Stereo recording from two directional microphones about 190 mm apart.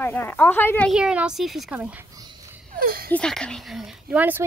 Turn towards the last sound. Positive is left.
turn(degrees=-10)  # may be behind; listen again after turning